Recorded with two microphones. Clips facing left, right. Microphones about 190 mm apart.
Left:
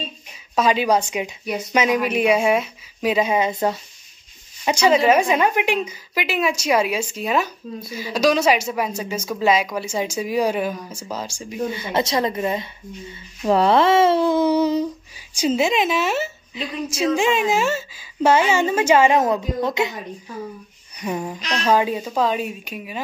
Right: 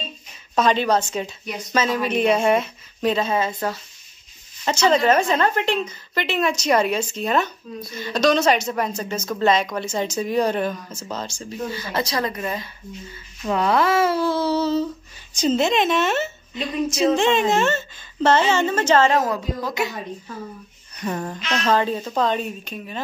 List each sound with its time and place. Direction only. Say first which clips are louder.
0.6 s speech: left 1 dB; 5° left (ahead or behind); by 3.8 s 20° left (ahead or behind)
4.6 s speech: left 2 dB; 10° left (ahead or behind)
11.7 s speech: left 3 dB; 20° left (ahead or behind)
21.0 s speech: left 1 dB; 10° left (ahead or behind)